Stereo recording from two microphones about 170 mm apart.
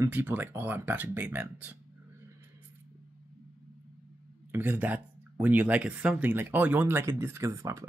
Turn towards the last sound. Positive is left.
turn(degrees=-15)  # may be behind; listen again after turning